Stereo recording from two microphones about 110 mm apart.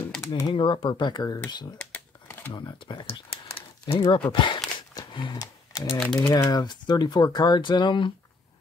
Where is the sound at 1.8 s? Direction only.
20° left (ahead or behind).